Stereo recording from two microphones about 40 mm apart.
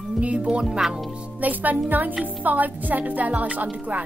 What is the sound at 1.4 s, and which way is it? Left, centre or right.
Speech, right.